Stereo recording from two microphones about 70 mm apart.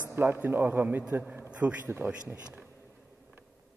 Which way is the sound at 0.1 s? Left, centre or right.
Right.